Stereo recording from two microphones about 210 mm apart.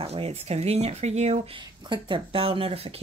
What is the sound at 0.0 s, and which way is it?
Speech, 30° right (ahead or behind).